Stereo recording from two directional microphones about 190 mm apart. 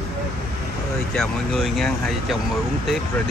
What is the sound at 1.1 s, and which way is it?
Speech, centre (ahead or behind).